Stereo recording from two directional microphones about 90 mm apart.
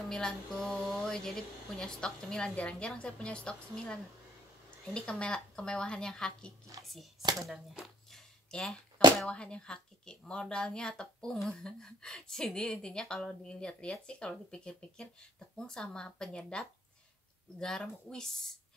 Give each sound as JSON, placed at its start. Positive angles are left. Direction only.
{"t": 0.1, "sound": "a woman's voice", "side_deg": 5}
{"t": 7.2, "sound": "speech", "side_deg": -45}
{"t": 7.4, "sound": "a sound", "side_deg": 0}
{"t": 9.3, "sound": "a woman's voice", "side_deg": 10}